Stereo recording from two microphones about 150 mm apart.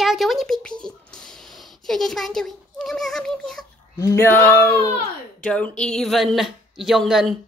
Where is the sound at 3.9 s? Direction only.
20° left (ahead or behind).